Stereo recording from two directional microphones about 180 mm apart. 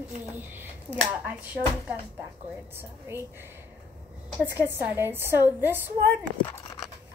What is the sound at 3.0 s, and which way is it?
A child's voice, 15° right (ahead or behind).